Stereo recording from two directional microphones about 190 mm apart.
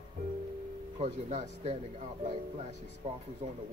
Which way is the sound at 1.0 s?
35° right (ahead or behind).